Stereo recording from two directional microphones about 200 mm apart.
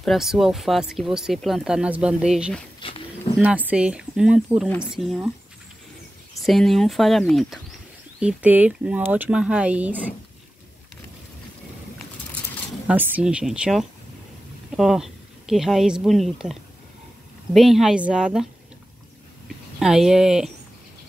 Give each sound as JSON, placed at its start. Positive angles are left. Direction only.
{"t": 0.0, "sound": "speech", "side_deg": 0}
{"t": 2.8, "sound": "speech", "side_deg": 25}
{"t": 3.3, "sound": "speech", "side_deg": -10}
{"t": 6.4, "sound": "speech", "side_deg": 0}
{"t": 12.8, "sound": "speech", "side_deg": -10}
{"t": 17.6, "sound": "speech", "side_deg": 0}
{"t": 19.8, "sound": "speech", "side_deg": 0}